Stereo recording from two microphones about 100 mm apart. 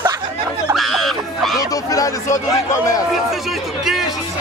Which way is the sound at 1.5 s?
35° left (ahead or behind).